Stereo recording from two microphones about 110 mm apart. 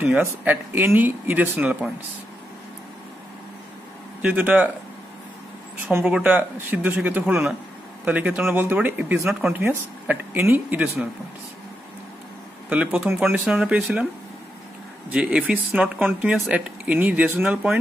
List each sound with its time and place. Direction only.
0.1 s speech: 15° right (ahead or behind)
4.2 s speech: 15° right (ahead or behind)
5.9 s speech: 15° right (ahead or behind)
12.6 s speech: 15° right (ahead or behind)
15.0 s speech: 10° right (ahead or behind)